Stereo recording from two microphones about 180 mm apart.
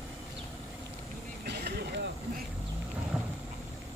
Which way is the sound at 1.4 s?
65° right (ahead or behind).